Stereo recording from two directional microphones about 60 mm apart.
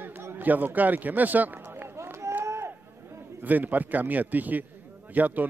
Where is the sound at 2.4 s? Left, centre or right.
Right.